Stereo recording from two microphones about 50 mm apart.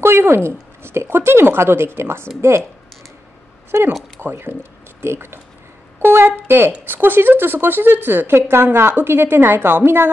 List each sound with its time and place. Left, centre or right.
0.0 s speech: right
4.2 s a woman's voice: right